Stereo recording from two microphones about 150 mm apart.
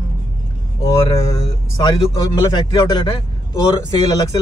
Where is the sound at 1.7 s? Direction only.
30° left (ahead or behind).